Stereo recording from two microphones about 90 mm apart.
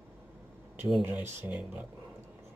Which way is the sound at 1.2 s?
25° right (ahead or behind).